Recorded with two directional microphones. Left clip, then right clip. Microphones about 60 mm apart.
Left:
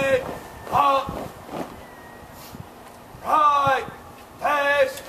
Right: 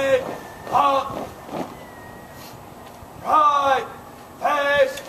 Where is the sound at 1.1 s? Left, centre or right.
Centre.